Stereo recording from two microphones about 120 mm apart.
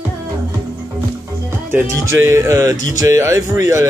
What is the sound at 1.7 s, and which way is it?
Speech, 20° right (ahead or behind).